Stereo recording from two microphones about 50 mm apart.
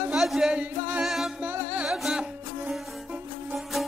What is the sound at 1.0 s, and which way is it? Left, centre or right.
Music, centre.